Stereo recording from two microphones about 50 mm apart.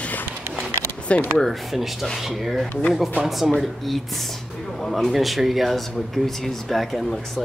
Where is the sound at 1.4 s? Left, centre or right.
Centre.